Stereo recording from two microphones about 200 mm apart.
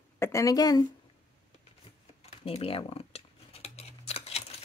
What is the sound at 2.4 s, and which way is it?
Scissors, 30° left (ahead or behind).